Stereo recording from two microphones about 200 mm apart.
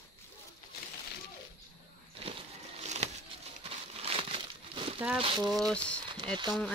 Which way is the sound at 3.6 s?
25° right (ahead or behind).